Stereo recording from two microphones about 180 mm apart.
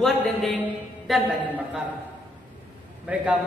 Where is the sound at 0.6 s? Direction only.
5° right (ahead or behind).